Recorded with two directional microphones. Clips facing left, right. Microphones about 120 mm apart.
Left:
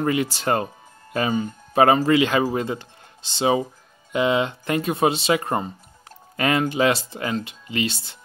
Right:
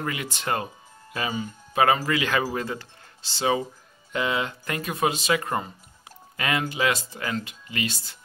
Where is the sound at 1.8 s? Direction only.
30° left (ahead or behind).